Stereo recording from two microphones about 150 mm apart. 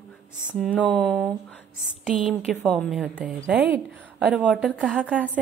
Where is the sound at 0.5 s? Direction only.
10° right (ahead or behind).